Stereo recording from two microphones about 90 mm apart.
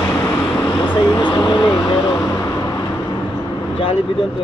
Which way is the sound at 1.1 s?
65° left (ahead or behind).